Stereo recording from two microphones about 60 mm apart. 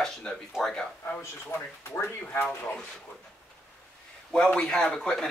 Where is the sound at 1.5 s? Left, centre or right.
Left.